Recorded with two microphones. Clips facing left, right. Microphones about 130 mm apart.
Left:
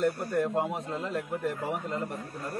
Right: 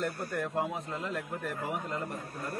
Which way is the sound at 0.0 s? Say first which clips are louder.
Left 6 dB; 20° left (ahead or behind).